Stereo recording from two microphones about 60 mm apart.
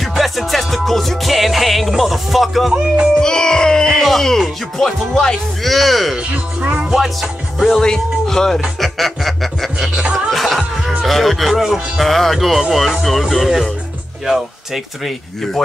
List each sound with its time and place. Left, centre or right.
0.0 s music: centre
3.2 s music: centre
6.3 s speech: right
6.9 s music: centre
7.8 s speech: centre
8.7 s music: centre
9.9 s music: centre
10.3 s music: centre